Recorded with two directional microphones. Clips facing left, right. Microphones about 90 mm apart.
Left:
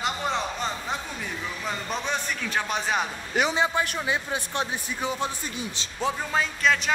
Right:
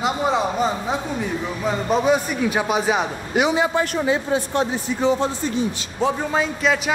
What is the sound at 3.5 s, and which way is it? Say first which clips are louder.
A man's voice: right 5 dB; 15° right (ahead or behind).